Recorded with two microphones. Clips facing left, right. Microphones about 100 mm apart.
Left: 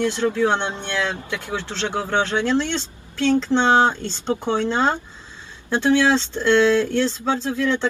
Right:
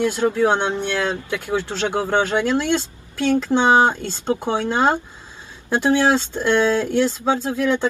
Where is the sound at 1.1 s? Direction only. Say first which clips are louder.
Right 4 dB; 25° right (ahead or behind).